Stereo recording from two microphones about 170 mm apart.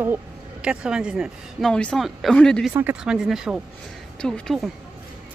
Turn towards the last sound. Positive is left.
turn(degrees=5)  # may be behind; listen again after turning